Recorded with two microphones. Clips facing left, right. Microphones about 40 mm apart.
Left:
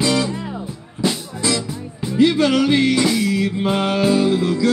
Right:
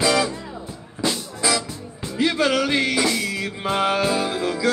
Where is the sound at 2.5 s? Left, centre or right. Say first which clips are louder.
Left 5 dB; centre.